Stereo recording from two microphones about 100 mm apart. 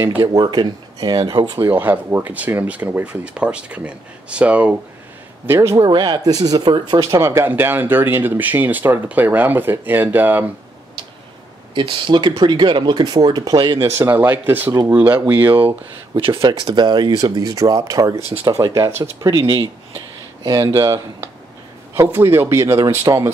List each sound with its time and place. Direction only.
0.3 s speech: 35° right (ahead or behind)
1.6 s speech: 20° right (ahead or behind)
5.5 s speech: 25° right (ahead or behind)
5.8 s speech: 50° right (ahead or behind); by 10.5 s 20° right (ahead or behind)
11.7 s speech: 60° right (ahead or behind)
13.8 s speech: 30° right (ahead or behind)
16.2 s speech: 65° right (ahead or behind); by 19.0 s 30° right (ahead or behind)
19.2 s speech: 40° right (ahead or behind)